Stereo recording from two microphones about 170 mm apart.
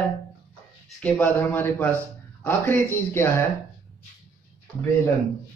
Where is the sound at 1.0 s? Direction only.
10° left (ahead or behind).